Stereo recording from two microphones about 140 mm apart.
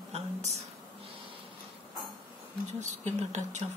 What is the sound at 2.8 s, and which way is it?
Speech, 55° right (ahead or behind).